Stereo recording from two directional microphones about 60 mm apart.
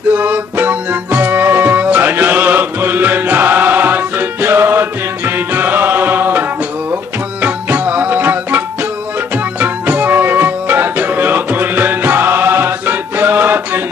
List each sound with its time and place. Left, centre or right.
0.1 s music: right
7.4 s music: right